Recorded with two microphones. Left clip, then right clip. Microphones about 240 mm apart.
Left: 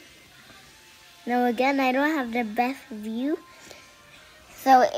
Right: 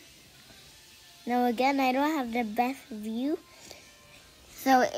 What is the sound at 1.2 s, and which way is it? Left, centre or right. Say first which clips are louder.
Speech: left 3 dB; left.